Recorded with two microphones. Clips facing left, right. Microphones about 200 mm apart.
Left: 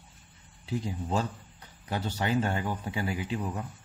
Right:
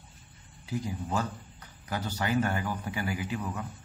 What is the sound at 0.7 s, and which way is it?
A man's voice, 25° left (ahead or behind).